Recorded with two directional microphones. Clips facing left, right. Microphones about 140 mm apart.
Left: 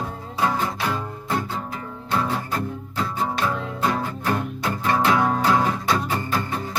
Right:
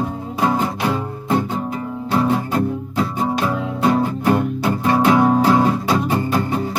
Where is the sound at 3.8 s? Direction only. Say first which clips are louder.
Right 8 dB; 20° right (ahead or behind).